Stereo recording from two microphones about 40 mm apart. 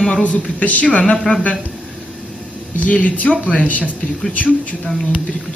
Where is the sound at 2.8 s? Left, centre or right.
Left.